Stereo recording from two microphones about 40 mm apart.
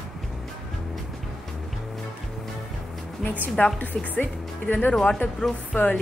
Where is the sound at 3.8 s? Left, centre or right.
Left.